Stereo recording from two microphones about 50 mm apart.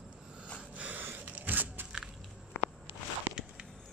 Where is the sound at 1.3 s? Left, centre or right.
Right.